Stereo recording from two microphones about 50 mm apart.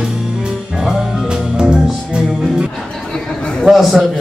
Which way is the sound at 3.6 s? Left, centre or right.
Centre.